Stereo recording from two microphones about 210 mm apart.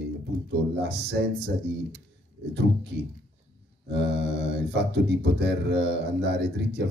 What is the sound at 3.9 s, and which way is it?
Mantra, 55° right (ahead or behind).